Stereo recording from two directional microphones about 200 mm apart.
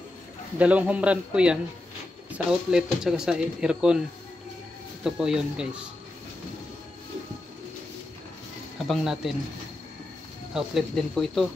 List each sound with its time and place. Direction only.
0.6 s a man's voice: 5° right (ahead or behind)
5.0 s speech: 5° right (ahead or behind)
8.8 s speech: centre (ahead or behind)
10.5 s speech: centre (ahead or behind)